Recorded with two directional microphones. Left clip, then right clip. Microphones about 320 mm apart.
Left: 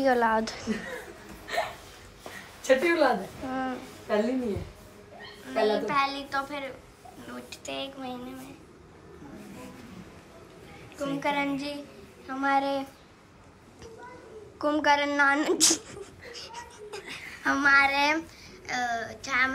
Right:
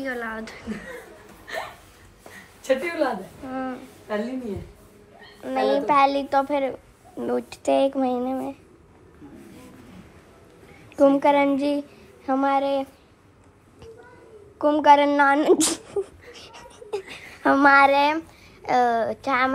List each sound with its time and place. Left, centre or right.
0.0 s speech: centre
2.6 s a woman's voice: centre
5.4 s a woman's voice: centre
11.0 s a woman's voice: centre
14.6 s a woman's voice: centre
16.3 s a sound: centre
18.7 s a woman's voice: centre